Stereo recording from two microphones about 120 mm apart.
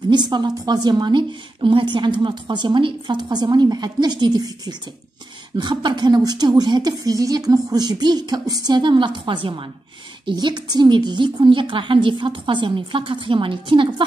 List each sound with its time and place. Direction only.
0.1 s a woman's voice: 35° right (ahead or behind)